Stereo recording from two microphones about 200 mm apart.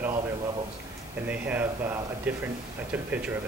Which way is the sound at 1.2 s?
10° right (ahead or behind).